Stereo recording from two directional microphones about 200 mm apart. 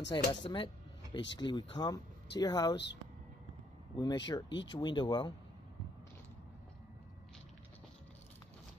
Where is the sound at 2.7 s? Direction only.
60° left (ahead or behind).